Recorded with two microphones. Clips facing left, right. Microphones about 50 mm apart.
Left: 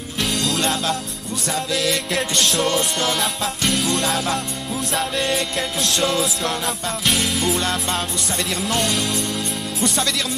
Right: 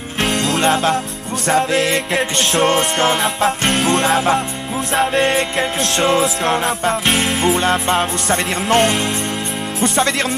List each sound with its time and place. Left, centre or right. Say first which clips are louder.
0.2 s music: right 5 dB; right
0.6 s music: right 7 dB; right